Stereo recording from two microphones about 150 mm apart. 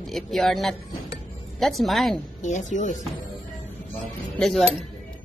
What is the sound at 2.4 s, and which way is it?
Speech, 55° left (ahead or behind).